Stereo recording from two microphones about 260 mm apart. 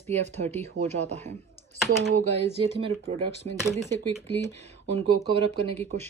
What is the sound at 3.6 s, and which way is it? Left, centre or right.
Speech, centre.